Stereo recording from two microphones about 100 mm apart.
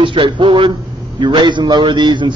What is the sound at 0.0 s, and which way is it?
A man's voice, 55° right (ahead or behind).